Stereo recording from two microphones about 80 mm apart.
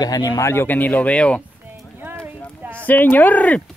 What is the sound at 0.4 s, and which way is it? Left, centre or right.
Speech, left.